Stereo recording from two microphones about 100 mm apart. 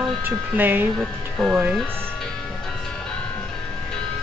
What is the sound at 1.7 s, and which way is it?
Music, 10° left (ahead or behind).